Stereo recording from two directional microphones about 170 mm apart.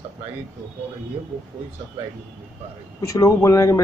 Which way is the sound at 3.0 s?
20° left (ahead or behind).